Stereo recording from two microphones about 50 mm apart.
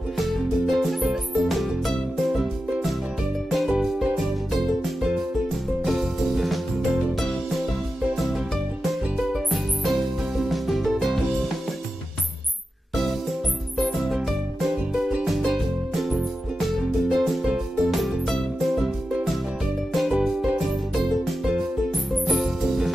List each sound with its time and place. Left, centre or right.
0.2 s music: centre
3.4 s music: centre
9.3 s music: centre
14.0 s music: centre
19.9 s music: centre
22.2 s music: centre